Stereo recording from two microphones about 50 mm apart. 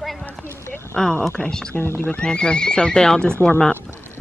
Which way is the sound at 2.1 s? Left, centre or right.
Left.